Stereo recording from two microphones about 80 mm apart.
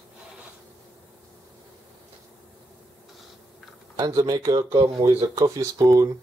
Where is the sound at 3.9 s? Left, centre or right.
Right.